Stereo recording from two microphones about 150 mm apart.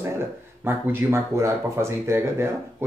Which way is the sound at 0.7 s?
15° right (ahead or behind).